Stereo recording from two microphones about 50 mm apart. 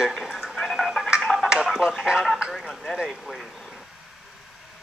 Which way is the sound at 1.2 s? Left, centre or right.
Centre.